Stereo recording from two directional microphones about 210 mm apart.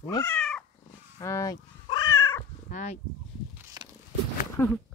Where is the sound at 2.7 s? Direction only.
35° left (ahead or behind).